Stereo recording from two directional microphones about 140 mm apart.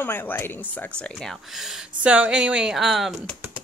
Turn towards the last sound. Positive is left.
turn(degrees=0)  # may be behind; listen again after turning